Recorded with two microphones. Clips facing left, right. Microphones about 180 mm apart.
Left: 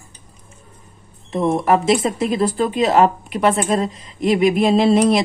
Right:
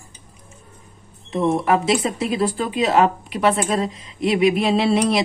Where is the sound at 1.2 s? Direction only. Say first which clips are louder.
Left 2 dB; 40° left (ahead or behind).